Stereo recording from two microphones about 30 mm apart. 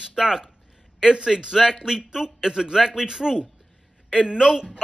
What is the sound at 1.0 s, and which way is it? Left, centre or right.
Speech, right.